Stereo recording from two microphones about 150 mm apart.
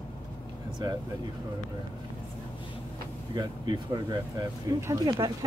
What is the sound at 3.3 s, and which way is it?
Speech, 30° right (ahead or behind).